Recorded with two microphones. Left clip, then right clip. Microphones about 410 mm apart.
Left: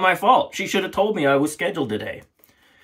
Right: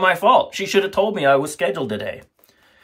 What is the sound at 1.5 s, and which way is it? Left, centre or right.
Speech, right.